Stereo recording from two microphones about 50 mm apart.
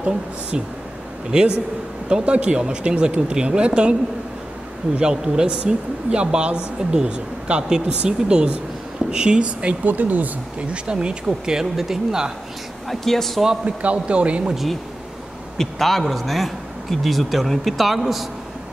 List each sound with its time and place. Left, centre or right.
1.3 s speech: centre
4.9 s speech: centre
9.9 s speech: right
10.7 s speech: right
12.8 s a man's voice: centre
13.7 s speech: right
14.5 s a man's voice: centre